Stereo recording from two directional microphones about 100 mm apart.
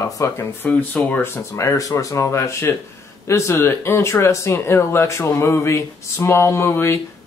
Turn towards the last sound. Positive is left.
turn(degrees=25)  # may be behind; listen again after turning